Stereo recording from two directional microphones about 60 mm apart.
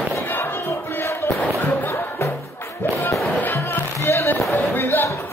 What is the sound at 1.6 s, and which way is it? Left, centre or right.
Music, left.